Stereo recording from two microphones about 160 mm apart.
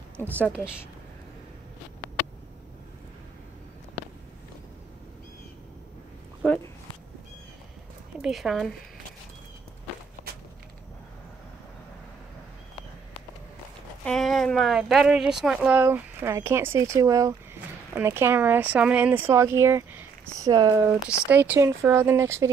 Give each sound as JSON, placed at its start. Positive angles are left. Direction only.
{"t": 0.2, "sound": "speech", "side_deg": 10}
{"t": 6.4, "sound": "a sound", "side_deg": 5}
{"t": 8.2, "sound": "speech", "side_deg": 0}
{"t": 14.0, "sound": "speech", "side_deg": 0}